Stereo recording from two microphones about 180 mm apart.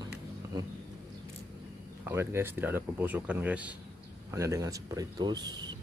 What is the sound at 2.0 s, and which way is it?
Speech, 15° right (ahead or behind).